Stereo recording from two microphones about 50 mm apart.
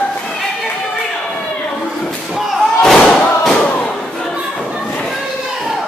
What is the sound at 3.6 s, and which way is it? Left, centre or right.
Slam, left.